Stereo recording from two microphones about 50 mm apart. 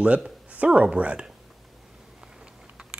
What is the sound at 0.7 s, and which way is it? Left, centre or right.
Speech, centre.